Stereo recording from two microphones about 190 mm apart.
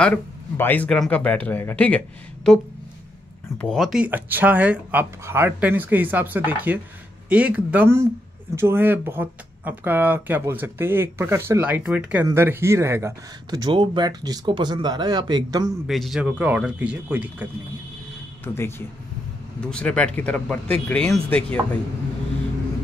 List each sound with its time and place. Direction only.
0.0 s speech: 10° left (ahead or behind)
3.6 s speech: centre (ahead or behind); by 15.7 s 20° right (ahead or behind)
15.9 s speech: centre (ahead or behind)
18.4 s speech: 15° left (ahead or behind)